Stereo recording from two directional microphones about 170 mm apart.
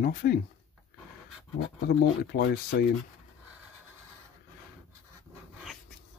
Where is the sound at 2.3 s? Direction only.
65° left (ahead or behind).